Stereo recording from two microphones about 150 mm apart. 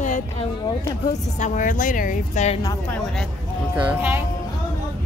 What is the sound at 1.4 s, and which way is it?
Speech, 60° left (ahead or behind).